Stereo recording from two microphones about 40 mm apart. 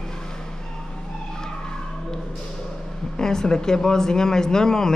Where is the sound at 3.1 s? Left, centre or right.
Centre.